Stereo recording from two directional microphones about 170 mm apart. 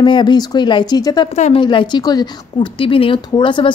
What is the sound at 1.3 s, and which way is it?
Speech, 40° left (ahead or behind).